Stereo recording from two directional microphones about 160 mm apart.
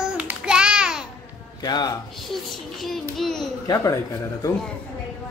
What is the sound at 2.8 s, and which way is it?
Child singing, centre (ahead or behind).